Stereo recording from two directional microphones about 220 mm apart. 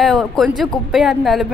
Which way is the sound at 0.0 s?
Centre (ahead or behind).